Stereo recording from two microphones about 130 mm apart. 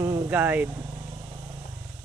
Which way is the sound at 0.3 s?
15° right (ahead or behind).